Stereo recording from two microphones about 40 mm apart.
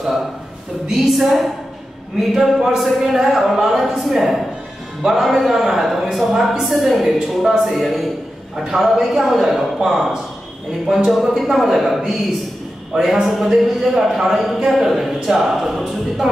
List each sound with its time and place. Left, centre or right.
1.1 s speech: centre